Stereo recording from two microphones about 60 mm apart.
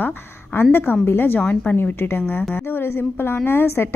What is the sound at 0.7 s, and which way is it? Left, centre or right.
Speech, left.